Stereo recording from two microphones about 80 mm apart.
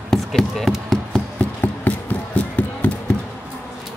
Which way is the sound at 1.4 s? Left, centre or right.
Centre.